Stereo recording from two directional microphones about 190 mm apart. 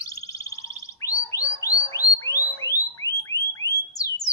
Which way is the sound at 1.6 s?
20° left (ahead or behind).